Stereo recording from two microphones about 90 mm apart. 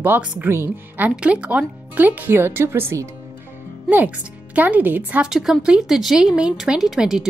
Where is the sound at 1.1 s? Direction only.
10° right (ahead or behind); by 3.1 s 30° right (ahead or behind).